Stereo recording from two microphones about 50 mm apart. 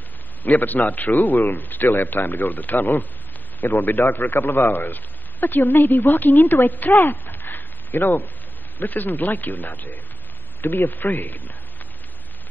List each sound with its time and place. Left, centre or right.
0.4 s a man's voice: left